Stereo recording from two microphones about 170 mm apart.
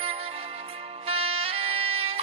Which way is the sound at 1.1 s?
35° right (ahead or behind).